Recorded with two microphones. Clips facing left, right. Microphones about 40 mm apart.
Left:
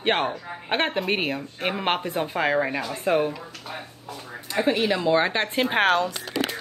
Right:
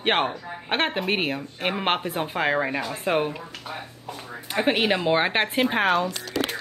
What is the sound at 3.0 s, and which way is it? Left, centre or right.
Speech, centre.